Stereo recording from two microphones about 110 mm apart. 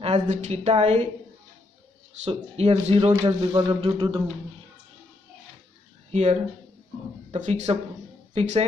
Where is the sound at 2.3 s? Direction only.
65° right (ahead or behind).